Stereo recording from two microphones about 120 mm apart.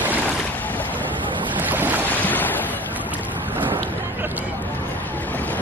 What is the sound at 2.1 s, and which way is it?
Boat, 15° left (ahead or behind).